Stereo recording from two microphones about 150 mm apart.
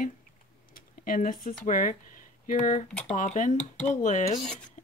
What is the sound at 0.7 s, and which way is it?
Speech, 65° left (ahead or behind).